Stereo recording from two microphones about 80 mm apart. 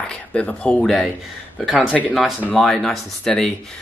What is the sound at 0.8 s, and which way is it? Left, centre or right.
Speech, centre.